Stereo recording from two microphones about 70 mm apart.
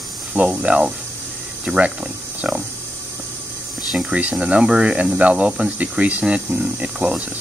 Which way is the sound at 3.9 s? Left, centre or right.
Centre.